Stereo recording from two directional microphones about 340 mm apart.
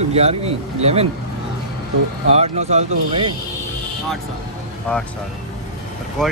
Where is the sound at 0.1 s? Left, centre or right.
Centre.